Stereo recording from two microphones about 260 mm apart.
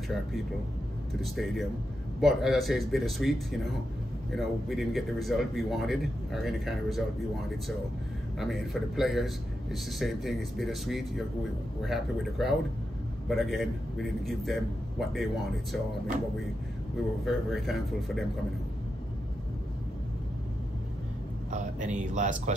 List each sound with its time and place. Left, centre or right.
1.2 s a man's voice: centre
8.4 s a man's voice: centre
17.2 s a man's voice: centre
21.5 s speech: right